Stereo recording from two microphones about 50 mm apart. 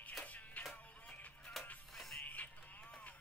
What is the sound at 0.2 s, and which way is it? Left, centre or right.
Music, left.